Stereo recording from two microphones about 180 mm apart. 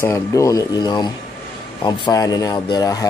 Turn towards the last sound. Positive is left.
turn(degrees=20)  # may be behind; listen again after turning